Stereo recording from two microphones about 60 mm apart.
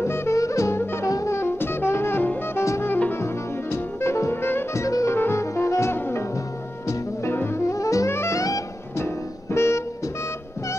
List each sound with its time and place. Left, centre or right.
0.0 s music: left
0.4 s jazz: left
2.5 s music: left
2.9 s music: left
3.7 s music: left
4.7 s music: left
5.1 s brass instrument: left
5.9 s music: left
7.3 s music: left
7.7 s music: left
8.1 s music: left